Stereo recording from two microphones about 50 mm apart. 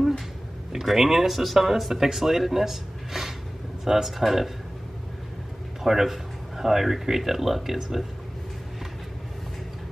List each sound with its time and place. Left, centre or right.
0.7 s speech: centre
5.9 s speech: centre